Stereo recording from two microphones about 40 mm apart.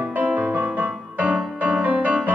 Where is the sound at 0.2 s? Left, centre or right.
Right.